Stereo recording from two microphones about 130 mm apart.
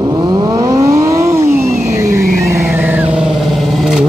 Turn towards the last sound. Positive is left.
turn(degrees=0)  # may be behind; listen again after turning